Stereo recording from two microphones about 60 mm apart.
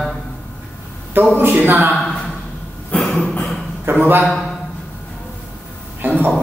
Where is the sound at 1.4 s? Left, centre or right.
Right.